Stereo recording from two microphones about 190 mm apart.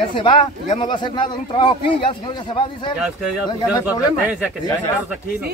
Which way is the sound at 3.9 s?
5° right (ahead or behind).